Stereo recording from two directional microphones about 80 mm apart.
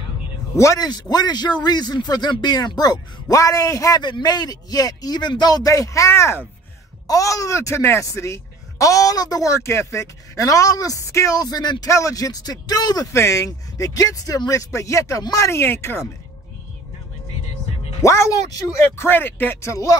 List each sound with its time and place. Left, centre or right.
0.6 s speech: left
0.8 s speech: left
4.0 s speech: left
9.5 s speech: left
11.9 s speech: left
13.1 s speech: left
15.6 s speech: left
18.0 s speech: left
18.9 s speech: left
19.6 s speech: left